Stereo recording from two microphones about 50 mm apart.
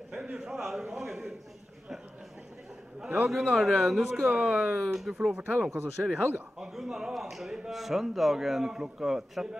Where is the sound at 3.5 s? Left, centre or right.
Centre.